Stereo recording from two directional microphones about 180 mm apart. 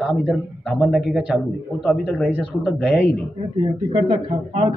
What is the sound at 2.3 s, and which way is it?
Speech, 5° right (ahead or behind).